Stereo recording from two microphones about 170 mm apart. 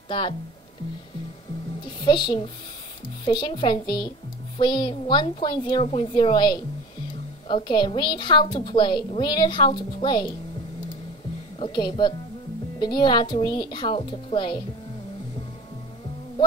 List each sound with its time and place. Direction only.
0.1 s a woman's voice: 30° left (ahead or behind)
1.8 s a woman's voice: 25° left (ahead or behind)
11.6 s a woman's voice: 25° left (ahead or behind)